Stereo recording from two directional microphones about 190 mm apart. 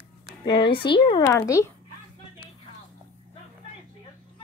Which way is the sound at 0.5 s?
25° left (ahead or behind).